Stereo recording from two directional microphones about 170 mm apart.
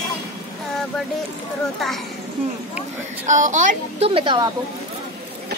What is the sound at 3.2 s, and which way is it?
Speech, 50° right (ahead or behind).